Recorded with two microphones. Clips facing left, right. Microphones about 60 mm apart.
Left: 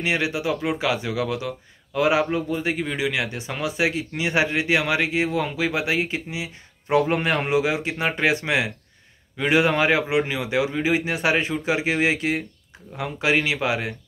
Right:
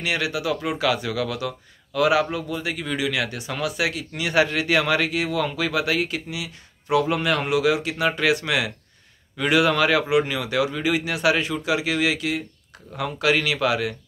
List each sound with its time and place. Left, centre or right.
0.0 s speech: left
12.9 s speech: left